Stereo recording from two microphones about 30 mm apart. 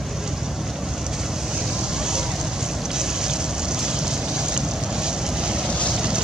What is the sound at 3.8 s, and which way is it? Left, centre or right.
Boat, right.